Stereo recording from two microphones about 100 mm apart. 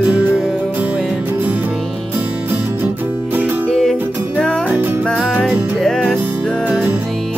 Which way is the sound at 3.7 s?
5° left (ahead or behind).